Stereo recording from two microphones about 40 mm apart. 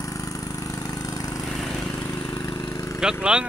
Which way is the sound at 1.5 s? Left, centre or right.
Centre.